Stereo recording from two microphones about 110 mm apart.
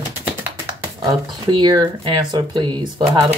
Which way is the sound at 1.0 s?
40° right (ahead or behind).